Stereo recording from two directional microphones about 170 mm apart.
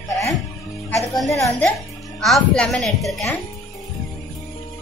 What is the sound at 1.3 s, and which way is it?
Speech, 20° left (ahead or behind).